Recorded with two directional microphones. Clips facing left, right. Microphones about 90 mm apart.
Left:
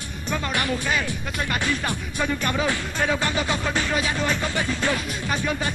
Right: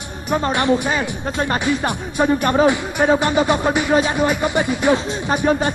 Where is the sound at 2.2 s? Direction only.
35° right (ahead or behind).